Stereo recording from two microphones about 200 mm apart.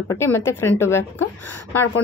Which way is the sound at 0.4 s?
15° left (ahead or behind).